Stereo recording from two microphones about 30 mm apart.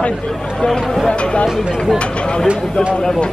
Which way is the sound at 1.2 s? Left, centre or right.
Left.